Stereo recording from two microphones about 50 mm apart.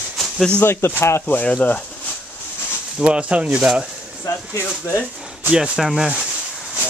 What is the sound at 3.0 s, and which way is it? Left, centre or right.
Speech, right.